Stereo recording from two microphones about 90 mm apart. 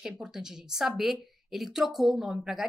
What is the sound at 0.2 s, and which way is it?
Speech, 5° right (ahead or behind).